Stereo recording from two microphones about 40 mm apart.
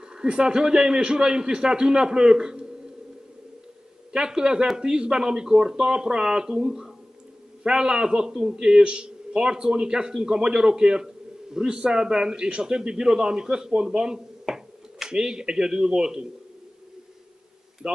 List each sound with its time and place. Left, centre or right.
0.1 s a man's voice: right
4.1 s a man's voice: centre
17.8 s a man's voice: right